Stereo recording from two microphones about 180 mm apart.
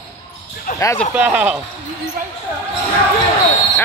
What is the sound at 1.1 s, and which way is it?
Speech, 10° right (ahead or behind).